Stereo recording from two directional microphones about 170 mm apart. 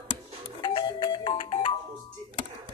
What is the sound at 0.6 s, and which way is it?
Music, 25° left (ahead or behind).